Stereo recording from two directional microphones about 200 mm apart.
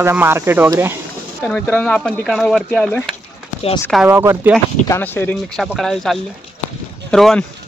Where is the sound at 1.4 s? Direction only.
5° left (ahead or behind).